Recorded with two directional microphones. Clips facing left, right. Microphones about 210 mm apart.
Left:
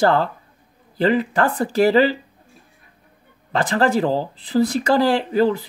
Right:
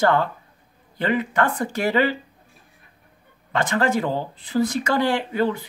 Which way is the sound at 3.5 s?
35° left (ahead or behind).